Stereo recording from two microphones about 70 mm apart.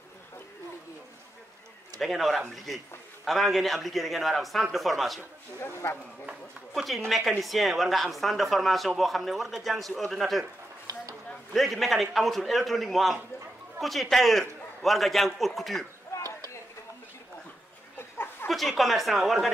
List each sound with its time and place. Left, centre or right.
2.0 s speech: centre
5.6 s speech: left
6.7 s speech: centre
11.5 s speech: centre
17.9 s a sound: left
18.5 s speech: centre